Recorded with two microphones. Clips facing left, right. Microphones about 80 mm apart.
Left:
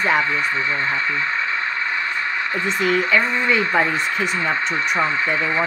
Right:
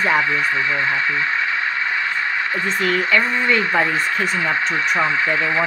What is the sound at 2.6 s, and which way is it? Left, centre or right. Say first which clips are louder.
Speech: left 2 dB; centre.